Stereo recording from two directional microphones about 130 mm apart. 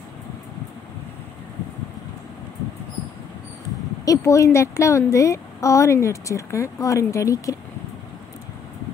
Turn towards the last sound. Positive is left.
turn(degrees=25)  # may be behind; listen again after turning